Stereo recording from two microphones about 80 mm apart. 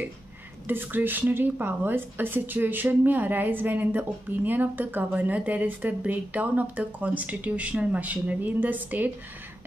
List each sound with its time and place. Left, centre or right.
0.7 s a woman's voice: right